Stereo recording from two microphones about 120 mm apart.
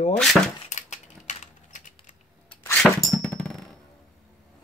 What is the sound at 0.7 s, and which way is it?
Typing, 80° left.